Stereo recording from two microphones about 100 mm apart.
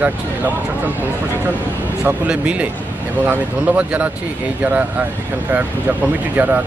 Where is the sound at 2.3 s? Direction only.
10° right (ahead or behind).